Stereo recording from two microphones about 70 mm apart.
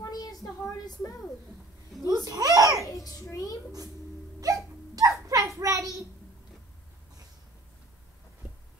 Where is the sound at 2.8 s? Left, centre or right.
Left.